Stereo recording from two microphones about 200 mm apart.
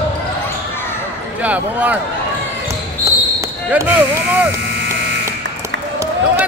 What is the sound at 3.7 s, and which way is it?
Speech, 10° right (ahead or behind).